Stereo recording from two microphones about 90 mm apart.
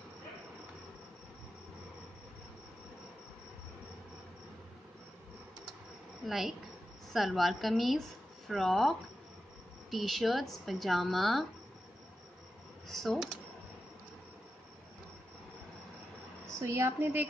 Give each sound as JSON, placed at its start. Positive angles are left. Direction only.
{"t": 6.2, "sound": "speech", "side_deg": 0}
{"t": 12.8, "sound": "speech", "side_deg": 0}
{"t": 16.6, "sound": "speech", "side_deg": -30}